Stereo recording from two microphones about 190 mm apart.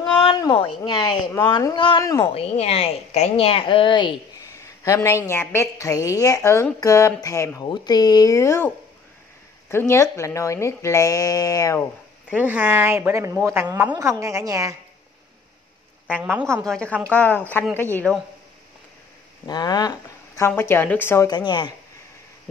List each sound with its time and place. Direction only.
0.2 s speech: 25° left (ahead or behind)
2.2 s a woman's voice: 30° left (ahead or behind)
12.3 s speech: 5° right (ahead or behind)
16.2 s speech: 10° right (ahead or behind)
16.6 s a woman's voice: 5° left (ahead or behind)
19.4 s speech: 20° left (ahead or behind)